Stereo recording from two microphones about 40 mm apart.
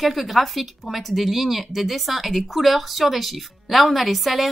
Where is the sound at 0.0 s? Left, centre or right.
Centre.